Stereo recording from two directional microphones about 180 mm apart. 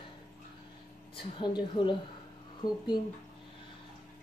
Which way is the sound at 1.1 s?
25° left (ahead or behind).